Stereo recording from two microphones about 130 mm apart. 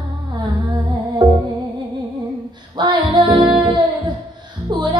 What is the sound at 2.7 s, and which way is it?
Music, 35° right (ahead or behind).